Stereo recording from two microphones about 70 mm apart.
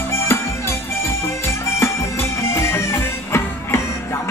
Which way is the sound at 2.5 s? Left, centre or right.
Left.